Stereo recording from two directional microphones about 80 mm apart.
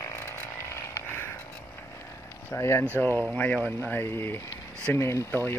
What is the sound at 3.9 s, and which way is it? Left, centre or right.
Speech, left.